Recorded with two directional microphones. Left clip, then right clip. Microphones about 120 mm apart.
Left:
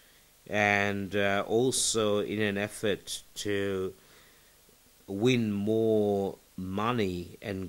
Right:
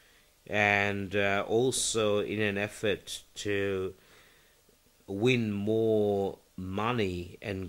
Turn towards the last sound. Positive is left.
turn(degrees=35)  # may be behind; listen again after turning